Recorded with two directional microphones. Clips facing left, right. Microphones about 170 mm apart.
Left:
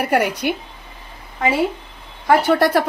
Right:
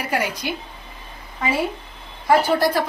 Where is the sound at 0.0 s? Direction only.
65° left (ahead or behind).